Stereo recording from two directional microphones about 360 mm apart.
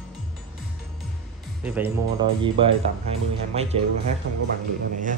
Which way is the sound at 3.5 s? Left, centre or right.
Centre.